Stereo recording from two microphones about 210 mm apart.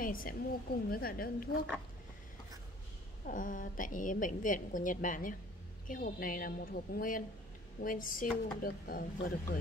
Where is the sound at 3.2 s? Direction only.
40° left (ahead or behind).